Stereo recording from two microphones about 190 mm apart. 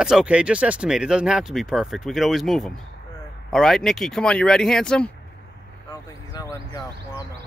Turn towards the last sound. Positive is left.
turn(degrees=15)  # may be behind; listen again after turning